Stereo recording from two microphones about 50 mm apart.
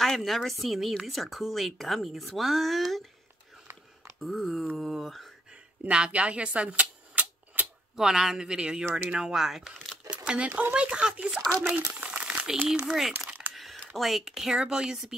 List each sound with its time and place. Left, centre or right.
0.0 s a woman's voice: centre
4.2 s a woman's voice: centre
5.9 s shuffling cards: right
7.9 s speech: centre
10.1 s crumpling: right
10.7 s speech: right
11.6 s crumpling: right
12.6 s speech: centre